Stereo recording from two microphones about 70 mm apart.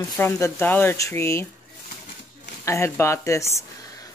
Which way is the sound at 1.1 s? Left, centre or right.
Left.